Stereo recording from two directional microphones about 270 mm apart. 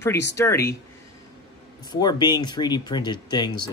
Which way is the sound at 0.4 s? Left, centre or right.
Centre.